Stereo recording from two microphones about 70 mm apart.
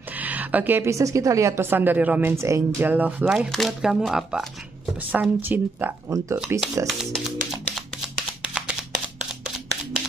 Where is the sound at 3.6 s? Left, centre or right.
Centre.